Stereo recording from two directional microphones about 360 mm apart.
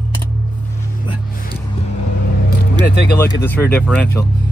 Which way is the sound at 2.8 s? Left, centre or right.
Left.